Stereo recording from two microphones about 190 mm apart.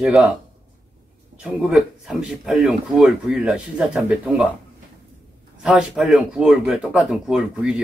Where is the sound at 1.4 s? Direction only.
Centre (ahead or behind).